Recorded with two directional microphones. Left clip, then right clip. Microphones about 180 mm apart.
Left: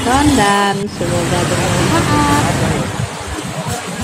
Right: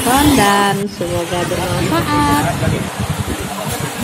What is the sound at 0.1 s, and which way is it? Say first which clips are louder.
Speech: even; centre (ahead or behind).